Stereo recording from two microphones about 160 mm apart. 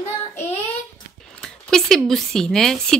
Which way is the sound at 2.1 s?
Centre (ahead or behind).